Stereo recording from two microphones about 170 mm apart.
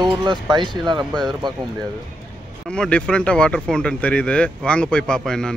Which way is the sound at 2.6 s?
5° left (ahead or behind).